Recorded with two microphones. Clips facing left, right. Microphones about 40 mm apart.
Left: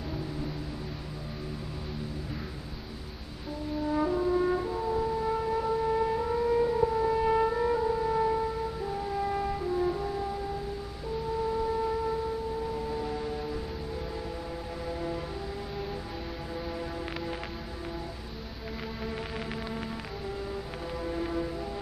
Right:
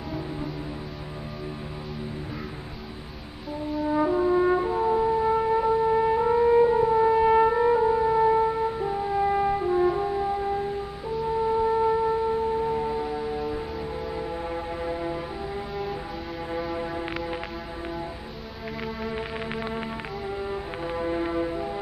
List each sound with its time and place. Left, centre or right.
3.8 s french horn: right
11.5 s music: right
13.0 s music: centre
14.5 s a sound: right
16.6 s music: right
19.0 s music: right